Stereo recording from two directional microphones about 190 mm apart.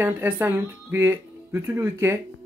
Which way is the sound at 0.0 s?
10° right (ahead or behind).